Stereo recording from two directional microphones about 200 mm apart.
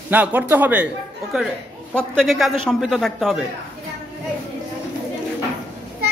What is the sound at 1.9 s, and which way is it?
A man's voice, 5° left (ahead or behind).